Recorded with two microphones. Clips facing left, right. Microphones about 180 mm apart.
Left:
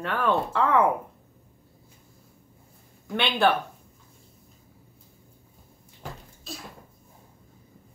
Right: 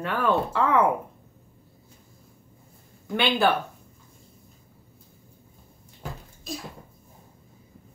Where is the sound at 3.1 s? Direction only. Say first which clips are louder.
Right 1 dB; centre (ahead or behind).